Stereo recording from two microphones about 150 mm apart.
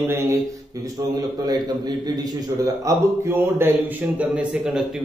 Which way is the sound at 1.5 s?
25° right (ahead or behind).